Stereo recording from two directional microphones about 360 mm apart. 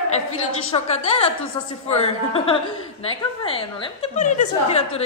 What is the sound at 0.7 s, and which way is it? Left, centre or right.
A woman's voice, centre.